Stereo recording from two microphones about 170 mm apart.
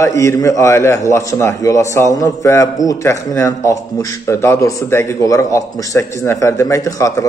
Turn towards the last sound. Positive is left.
turn(degrees=20)  # may be behind; listen again after turning